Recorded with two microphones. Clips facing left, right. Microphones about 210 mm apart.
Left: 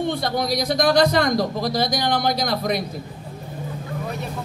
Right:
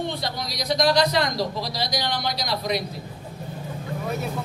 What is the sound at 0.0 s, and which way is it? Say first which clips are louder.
Speech: left 6 dB; 50° left (ahead or behind).